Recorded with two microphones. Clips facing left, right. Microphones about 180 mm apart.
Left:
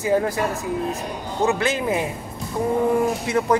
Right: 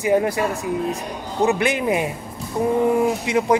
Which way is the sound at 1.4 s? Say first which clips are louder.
Right 2 dB; 15° right (ahead or behind).